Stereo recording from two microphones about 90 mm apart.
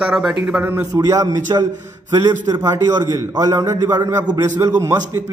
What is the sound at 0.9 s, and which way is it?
A man's voice, 40° right (ahead or behind).